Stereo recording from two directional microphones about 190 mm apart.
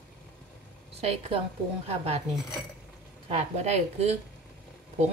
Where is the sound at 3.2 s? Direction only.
35° right (ahead or behind).